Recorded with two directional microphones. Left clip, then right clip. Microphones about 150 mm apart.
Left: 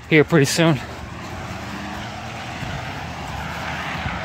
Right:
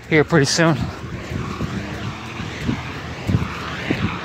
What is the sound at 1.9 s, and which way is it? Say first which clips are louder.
Vehicle: even; 60° left (ahead or behind).